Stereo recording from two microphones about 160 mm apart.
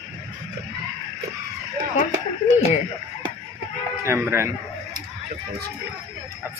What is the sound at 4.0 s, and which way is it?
Speech, 15° right (ahead or behind).